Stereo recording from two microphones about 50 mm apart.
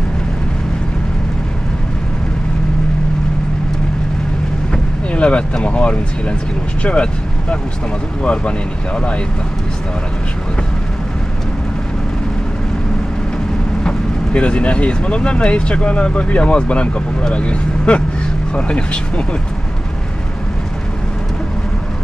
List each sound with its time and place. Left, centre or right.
5.1 s speech: left
13.8 s speech: left